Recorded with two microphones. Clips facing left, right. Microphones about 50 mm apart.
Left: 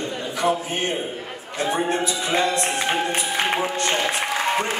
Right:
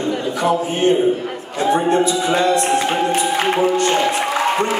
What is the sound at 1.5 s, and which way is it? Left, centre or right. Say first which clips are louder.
Speech: right 7 dB; right.